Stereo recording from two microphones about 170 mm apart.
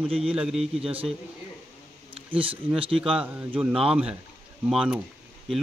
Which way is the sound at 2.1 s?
30° right (ahead or behind).